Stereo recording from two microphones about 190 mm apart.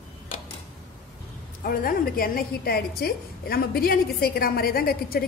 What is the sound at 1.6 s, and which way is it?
A woman's voice, 50° left (ahead or behind).